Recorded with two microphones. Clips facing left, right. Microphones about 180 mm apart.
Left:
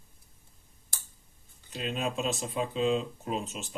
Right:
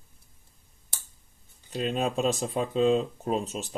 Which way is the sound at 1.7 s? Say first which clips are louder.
Right 5 dB; 40° right (ahead or behind).